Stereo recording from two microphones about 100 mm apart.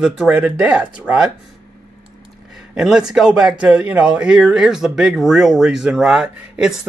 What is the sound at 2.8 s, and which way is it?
A man's voice, 5° right (ahead or behind).